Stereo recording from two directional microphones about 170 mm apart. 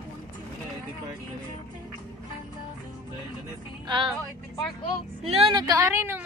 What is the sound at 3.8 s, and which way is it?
Speech, 30° right (ahead or behind).